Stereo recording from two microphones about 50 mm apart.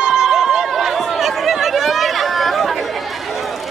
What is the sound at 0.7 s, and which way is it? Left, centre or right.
Chatter, centre.